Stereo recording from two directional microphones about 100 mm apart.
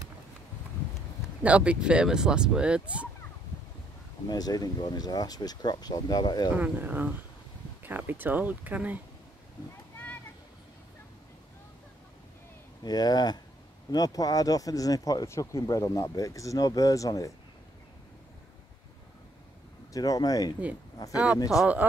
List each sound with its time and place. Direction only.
1.4 s speech: 10° right (ahead or behind)
4.3 s speech: 40° left (ahead or behind)
6.5 s speech: 20° right (ahead or behind)
12.8 s speech: 40° left (ahead or behind)
19.9 s speech: 40° left (ahead or behind)
21.1 s speech: 10° right (ahead or behind)